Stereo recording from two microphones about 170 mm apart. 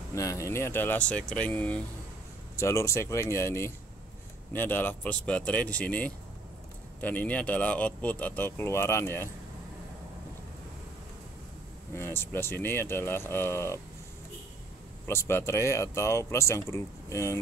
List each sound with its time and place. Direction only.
0.1 s speech: 20° left (ahead or behind)
11.9 s speech: 15° left (ahead or behind)
15.0 s speech: 15° left (ahead or behind)